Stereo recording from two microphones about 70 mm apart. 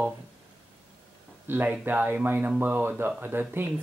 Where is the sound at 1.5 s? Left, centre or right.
Right.